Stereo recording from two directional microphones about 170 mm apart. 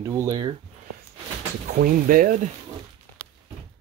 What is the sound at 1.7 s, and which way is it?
Speech, 55° right (ahead or behind).